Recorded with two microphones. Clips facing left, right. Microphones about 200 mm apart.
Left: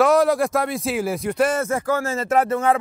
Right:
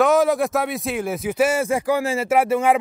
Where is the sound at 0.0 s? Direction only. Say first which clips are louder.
Even; centre (ahead or behind).